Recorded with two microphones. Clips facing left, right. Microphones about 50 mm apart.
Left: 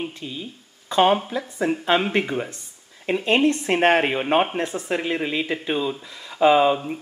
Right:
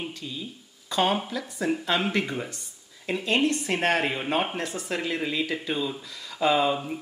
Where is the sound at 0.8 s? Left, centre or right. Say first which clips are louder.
Left 7 dB; left.